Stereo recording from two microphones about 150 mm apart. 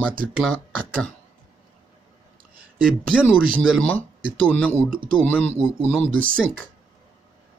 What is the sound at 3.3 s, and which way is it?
Speech, 10° left (ahead or behind).